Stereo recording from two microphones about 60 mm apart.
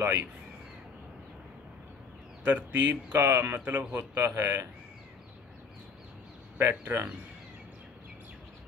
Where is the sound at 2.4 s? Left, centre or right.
Right.